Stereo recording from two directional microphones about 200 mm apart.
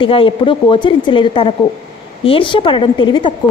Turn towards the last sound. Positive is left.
turn(degrees=20)  # may be behind; listen again after turning